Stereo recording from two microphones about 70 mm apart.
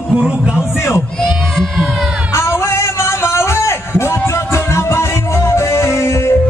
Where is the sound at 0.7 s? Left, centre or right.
Left.